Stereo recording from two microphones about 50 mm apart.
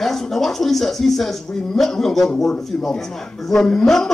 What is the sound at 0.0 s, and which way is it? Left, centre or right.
A woman's voice, centre.